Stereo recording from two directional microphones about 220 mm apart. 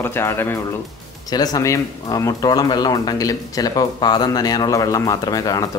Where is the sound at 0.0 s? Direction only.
10° left (ahead or behind).